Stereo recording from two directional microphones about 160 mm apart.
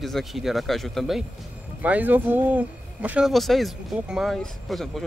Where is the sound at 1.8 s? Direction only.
10° right (ahead or behind).